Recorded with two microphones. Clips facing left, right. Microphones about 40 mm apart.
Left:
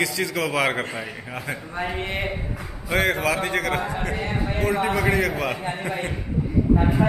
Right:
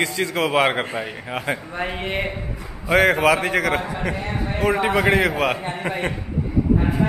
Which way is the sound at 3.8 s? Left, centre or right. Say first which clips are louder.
Right 1 dB; centre.